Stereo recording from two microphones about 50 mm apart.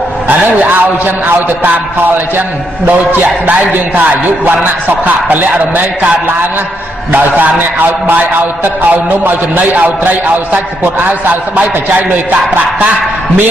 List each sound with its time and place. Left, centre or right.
0.3 s a man's voice: right
3.2 s a man's voice: right
7.1 s a man's voice: right
10.5 s a man's voice: right